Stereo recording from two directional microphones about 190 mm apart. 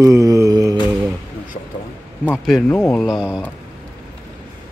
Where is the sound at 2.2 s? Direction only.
5° left (ahead or behind).